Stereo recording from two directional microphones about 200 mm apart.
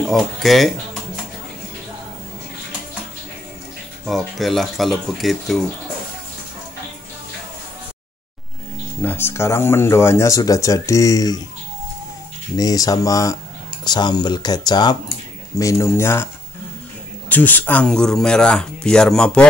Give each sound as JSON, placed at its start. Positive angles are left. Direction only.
{"t": 0.0, "sound": "speech", "side_deg": 0}
{"t": 4.0, "sound": "speech", "side_deg": 0}
{"t": 9.0, "sound": "speech", "side_deg": 10}
{"t": 12.5, "sound": "speech", "side_deg": 20}
{"t": 17.3, "sound": "speech", "side_deg": 10}